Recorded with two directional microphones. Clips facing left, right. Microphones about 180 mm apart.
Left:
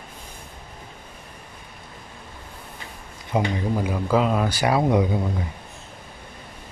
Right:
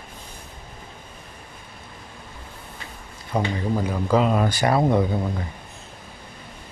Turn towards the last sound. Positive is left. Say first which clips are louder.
# even
turn(degrees=15)  # may be behind; listen again after turning